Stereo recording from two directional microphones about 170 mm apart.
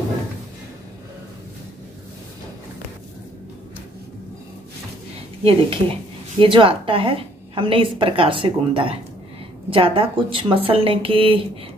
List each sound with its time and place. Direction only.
5.4 s a woman's voice: 35° right (ahead or behind)